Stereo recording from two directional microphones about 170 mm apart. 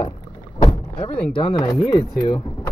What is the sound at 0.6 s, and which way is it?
Rowboat, 35° left (ahead or behind).